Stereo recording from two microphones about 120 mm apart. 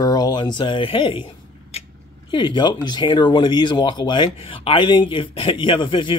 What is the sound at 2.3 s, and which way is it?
Speech, 40° left (ahead or behind).